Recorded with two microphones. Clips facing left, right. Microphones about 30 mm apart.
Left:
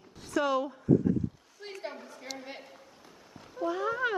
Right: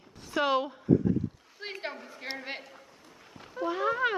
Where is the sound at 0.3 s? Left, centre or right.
Right.